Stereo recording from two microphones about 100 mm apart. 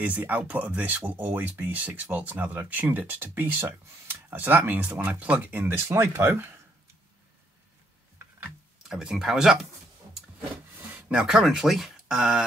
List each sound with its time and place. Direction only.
0.0 s speech: 15° right (ahead or behind)
8.8 s speech: 5° right (ahead or behind)
10.9 s a sound: 15° right (ahead or behind)
11.1 s speech: 5° right (ahead or behind)